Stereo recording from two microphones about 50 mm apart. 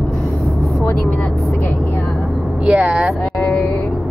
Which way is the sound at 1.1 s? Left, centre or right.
Left.